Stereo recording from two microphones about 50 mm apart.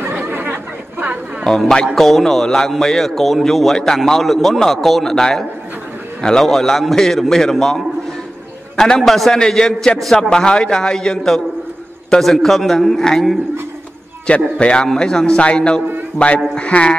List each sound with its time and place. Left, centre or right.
0.0 s chatter: right
1.4 s a man's voice: centre
14.3 s a man's voice: left
16.2 s speech: left
16.5 s a man's voice: left